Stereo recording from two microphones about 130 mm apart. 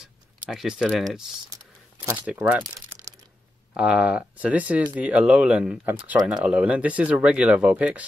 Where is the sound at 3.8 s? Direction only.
10° right (ahead or behind).